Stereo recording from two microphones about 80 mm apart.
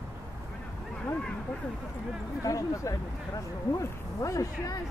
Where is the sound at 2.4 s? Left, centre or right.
Left.